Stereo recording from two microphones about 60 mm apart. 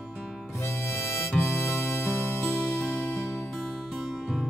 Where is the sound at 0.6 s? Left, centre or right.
Left.